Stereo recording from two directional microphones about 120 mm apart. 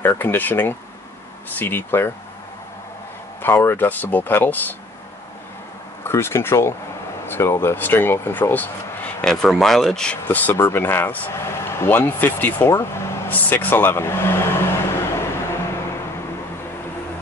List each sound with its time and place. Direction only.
0.0 s speech: 20° left (ahead or behind)
3.4 s speech: 20° left (ahead or behind)
6.0 s speech: 20° left (ahead or behind); by 10.1 s 5° left (ahead or behind)
10.2 s speech: 15° left (ahead or behind)